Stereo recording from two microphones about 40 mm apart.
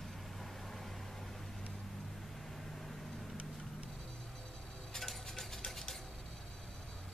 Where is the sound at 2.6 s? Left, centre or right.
Centre.